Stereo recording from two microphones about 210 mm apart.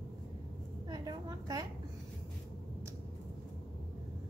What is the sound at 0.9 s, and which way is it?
Speech, 20° right (ahead or behind).